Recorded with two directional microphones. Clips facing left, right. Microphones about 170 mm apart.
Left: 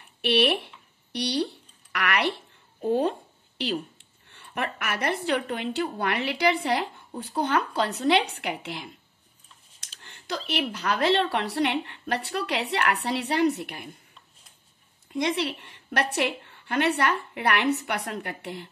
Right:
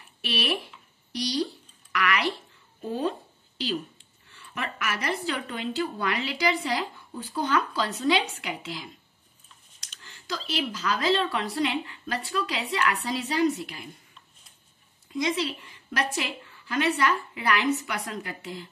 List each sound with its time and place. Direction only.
0.2 s a woman's voice: 65° left (ahead or behind)
1.1 s a sound: 65° left (ahead or behind)
4.0 s a woman's voice: 60° left (ahead or behind)
10.0 s a woman's voice: 60° left (ahead or behind)
15.1 s a woman's voice: 60° left (ahead or behind)